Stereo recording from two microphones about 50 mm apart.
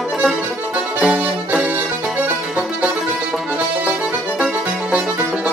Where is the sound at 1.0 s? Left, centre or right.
Centre.